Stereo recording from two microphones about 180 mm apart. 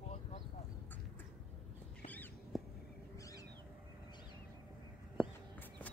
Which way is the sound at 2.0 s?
10° left (ahead or behind).